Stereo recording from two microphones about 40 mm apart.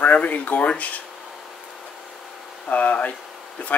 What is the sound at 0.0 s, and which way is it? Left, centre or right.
Speech, left.